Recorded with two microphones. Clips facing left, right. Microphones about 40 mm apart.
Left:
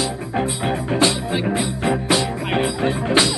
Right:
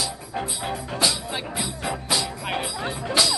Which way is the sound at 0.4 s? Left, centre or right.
Left.